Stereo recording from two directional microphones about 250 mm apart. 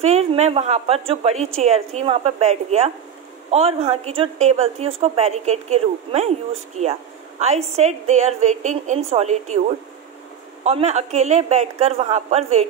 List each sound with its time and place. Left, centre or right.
0.0 s a woman's voice: right